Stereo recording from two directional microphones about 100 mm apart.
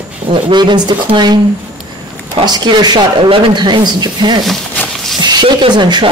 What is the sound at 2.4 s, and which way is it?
Speech, 45° right (ahead or behind).